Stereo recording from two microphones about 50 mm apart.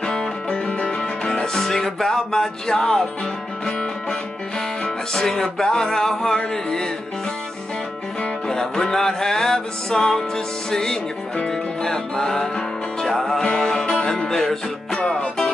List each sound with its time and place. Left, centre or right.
0.0 s music: centre
1.2 s music: centre
4.8 s music: centre
8.5 s music: centre